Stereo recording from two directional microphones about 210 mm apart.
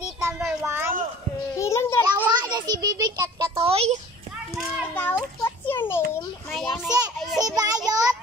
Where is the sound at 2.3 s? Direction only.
20° right (ahead or behind).